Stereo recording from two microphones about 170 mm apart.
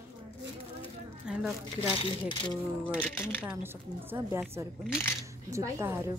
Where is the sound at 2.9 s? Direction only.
10° left (ahead or behind).